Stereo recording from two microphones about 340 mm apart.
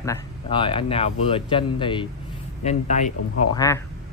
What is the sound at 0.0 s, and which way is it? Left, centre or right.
Speech, centre.